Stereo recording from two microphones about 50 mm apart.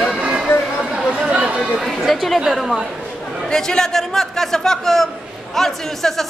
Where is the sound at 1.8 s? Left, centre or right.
Centre.